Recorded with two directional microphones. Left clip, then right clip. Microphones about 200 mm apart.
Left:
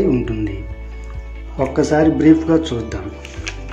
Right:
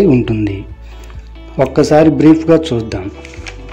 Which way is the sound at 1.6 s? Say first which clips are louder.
Right 6 dB; 35° right (ahead or behind).